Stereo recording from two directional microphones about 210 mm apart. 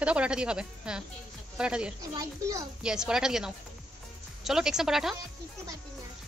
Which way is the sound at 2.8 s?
5° right (ahead or behind).